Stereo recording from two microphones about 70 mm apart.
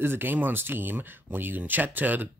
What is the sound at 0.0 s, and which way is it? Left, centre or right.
Speech, right.